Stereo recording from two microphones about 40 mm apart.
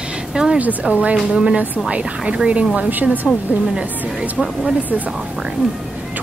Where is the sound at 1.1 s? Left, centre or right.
Right.